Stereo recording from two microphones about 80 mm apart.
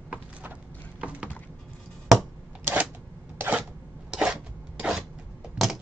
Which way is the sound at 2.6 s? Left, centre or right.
Centre.